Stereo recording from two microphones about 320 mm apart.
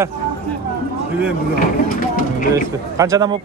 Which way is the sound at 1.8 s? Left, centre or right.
Left.